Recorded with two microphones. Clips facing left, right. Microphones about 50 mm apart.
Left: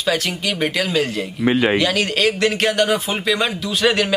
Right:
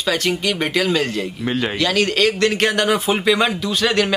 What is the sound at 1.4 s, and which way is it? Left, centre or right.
Speech, centre.